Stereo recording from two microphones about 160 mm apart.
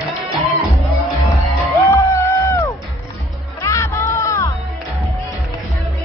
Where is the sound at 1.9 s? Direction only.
15° left (ahead or behind).